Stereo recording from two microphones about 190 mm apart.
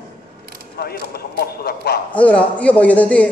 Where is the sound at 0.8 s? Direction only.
55° left (ahead or behind).